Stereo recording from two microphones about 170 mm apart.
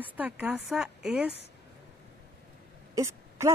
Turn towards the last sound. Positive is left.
turn(degrees=-15)  # may be behind; listen again after turning